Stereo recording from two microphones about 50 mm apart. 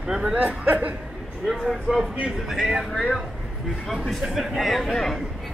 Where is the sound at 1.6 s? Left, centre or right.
Centre.